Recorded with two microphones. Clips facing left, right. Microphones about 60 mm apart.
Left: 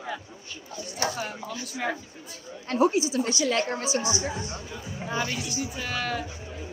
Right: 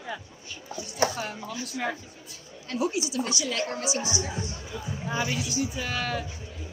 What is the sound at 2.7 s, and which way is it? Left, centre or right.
A woman's voice, left.